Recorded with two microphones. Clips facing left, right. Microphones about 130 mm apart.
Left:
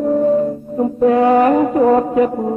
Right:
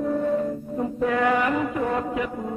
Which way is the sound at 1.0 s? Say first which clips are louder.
Left 11 dB; 30° left (ahead or behind).